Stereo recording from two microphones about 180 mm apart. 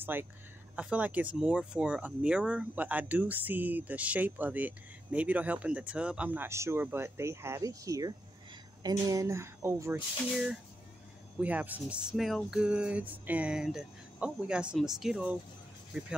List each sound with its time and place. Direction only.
0.0 s speech: 10° right (ahead or behind)
10.3 s speech: 5° right (ahead or behind)